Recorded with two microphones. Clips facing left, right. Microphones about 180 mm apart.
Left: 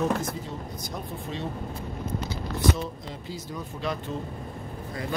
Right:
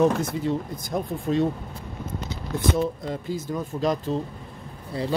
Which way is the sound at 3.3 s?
50° right (ahead or behind).